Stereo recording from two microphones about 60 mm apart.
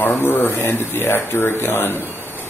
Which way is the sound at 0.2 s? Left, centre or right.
Left.